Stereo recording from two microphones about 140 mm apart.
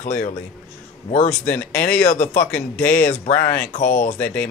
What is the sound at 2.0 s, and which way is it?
Speech, 65° left (ahead or behind).